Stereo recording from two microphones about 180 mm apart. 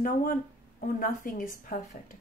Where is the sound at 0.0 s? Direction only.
50° left (ahead or behind).